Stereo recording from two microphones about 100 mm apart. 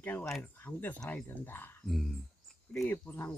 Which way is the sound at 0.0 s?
20° left (ahead or behind).